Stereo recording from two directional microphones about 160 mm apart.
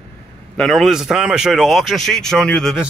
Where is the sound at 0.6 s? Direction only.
Centre (ahead or behind).